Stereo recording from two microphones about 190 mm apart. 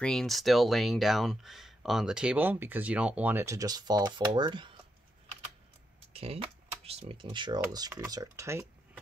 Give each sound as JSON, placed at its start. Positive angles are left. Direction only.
{"t": 0.0, "sound": "speech", "side_deg": 0}
{"t": 6.1, "sound": "speech", "side_deg": -30}